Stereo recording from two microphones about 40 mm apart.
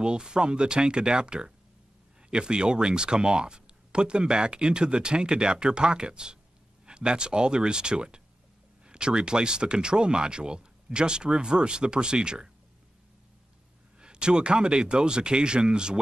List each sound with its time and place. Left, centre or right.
0.0 s speech: right
13.9 s speech: right